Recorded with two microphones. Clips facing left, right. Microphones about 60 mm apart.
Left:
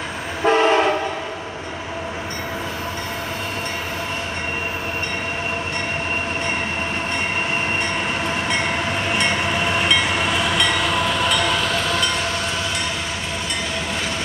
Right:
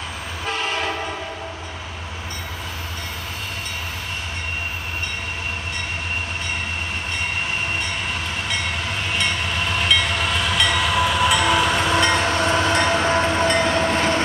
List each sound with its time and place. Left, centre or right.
0.5 s train: left
9.1 s train: centre
12.3 s train: right